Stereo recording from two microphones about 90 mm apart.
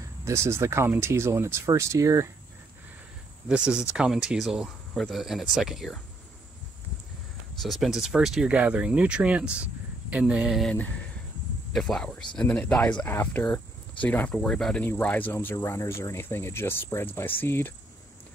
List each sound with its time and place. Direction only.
0.2 s speech: 30° right (ahead or behind)
3.4 s speech: 10° right (ahead or behind)
7.5 s speech: centre (ahead or behind)
11.7 s speech: 5° left (ahead or behind)
13.0 s speech: 25° left (ahead or behind); by 14.8 s 10° left (ahead or behind)
14.8 s speech: 20° left (ahead or behind)
15.5 s speech: 35° left (ahead or behind)